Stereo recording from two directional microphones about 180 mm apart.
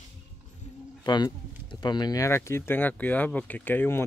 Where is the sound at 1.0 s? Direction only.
25° left (ahead or behind).